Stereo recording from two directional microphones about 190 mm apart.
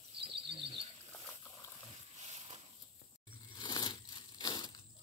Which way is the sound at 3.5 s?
25° left (ahead or behind).